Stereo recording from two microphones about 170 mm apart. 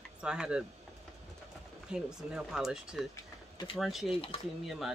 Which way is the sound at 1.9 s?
5° right (ahead or behind).